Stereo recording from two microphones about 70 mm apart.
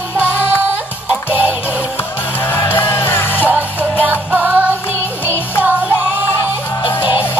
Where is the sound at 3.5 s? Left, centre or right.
Right.